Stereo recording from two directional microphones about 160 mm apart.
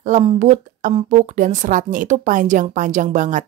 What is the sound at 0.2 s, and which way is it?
A woman's voice, 40° right (ahead or behind).